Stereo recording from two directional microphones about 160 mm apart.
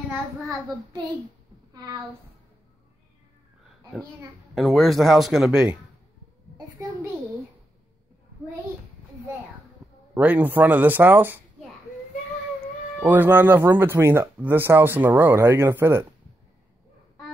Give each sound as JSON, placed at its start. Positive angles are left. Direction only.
{"t": 1.7, "sound": "a woman's voice", "side_deg": -25}
{"t": 4.6, "sound": "speech", "side_deg": 0}
{"t": 10.1, "sound": "speech", "side_deg": -10}
{"t": 12.5, "sound": "speech", "side_deg": -10}